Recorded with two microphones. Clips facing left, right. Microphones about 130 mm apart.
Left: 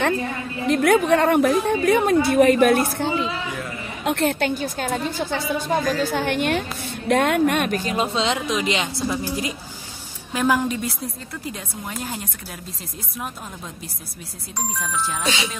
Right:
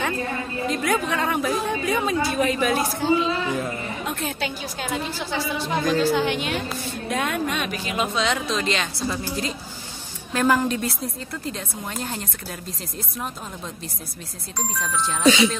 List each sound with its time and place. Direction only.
0.7 s a woman's voice: 60° left (ahead or behind)
4.0 s a woman's voice: 70° left (ahead or behind); by 7.9 s 50° left (ahead or behind)
7.9 s a woman's voice: 30° left (ahead or behind); by 12.2 s 5° left (ahead or behind)
14.8 s a woman's voice: 10° left (ahead or behind)